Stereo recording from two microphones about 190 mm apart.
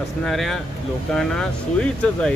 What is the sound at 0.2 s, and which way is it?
Speech, centre (ahead or behind).